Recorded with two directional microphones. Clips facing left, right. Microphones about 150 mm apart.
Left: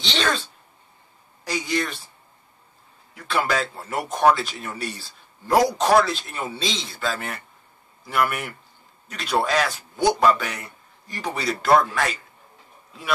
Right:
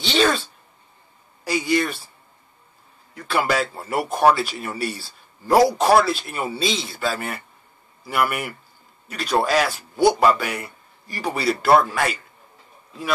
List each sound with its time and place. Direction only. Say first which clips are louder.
0.0 s a man's voice: right 5 dB; 5° right (ahead or behind)
1.4 s a man's voice: right 4 dB; 5° right (ahead or behind)
3.3 s a man's voice: right 2 dB; 5° right (ahead or behind)